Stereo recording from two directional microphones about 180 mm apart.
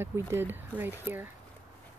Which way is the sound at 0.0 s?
15° right (ahead or behind).